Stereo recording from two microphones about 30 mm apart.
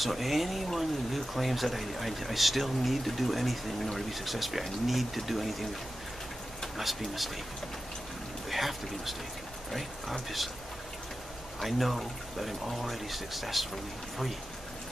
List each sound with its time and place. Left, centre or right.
0.0 s speech: centre
6.8 s speech: centre
8.5 s speech: centre
11.6 s speech: centre